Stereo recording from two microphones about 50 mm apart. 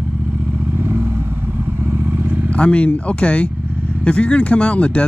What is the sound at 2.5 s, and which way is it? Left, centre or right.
Speech, left.